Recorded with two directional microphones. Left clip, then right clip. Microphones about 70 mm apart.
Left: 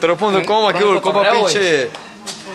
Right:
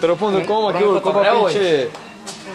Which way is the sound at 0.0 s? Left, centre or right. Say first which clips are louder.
Left 2 dB; left.